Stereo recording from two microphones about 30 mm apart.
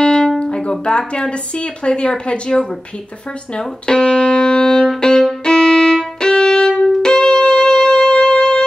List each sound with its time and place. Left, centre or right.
0.0 s music: left
0.4 s speech: left
3.5 s music: left
5.4 s violin: left